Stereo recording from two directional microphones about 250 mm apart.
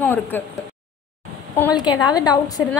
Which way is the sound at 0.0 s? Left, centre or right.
Centre.